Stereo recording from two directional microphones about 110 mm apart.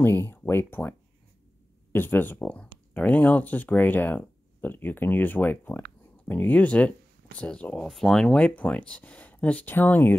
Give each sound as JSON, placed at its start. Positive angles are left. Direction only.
{"t": 0.0, "sound": "speech", "side_deg": 20}